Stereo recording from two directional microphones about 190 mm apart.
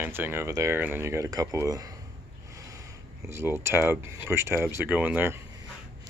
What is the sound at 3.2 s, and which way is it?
Speech, 15° right (ahead or behind).